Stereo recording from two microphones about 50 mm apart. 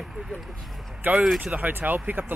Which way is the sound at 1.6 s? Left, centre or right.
Right.